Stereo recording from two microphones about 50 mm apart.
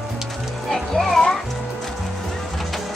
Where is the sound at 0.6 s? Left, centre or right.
Centre.